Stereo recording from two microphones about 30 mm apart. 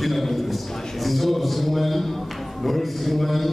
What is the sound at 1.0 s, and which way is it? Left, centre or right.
A man's voice, centre.